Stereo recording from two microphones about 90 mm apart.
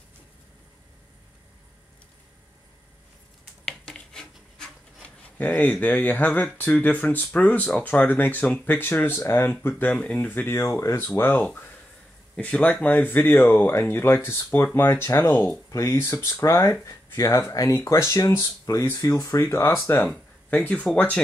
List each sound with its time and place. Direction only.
3.6 s rub: 5° left (ahead or behind)
5.5 s speech: 20° left (ahead or behind)
10.5 s speech: 30° left (ahead or behind)